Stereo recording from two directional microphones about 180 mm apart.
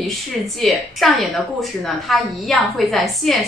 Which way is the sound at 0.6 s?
Centre (ahead or behind).